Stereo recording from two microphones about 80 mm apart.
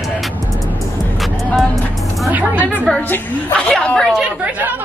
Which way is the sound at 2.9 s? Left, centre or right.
Centre.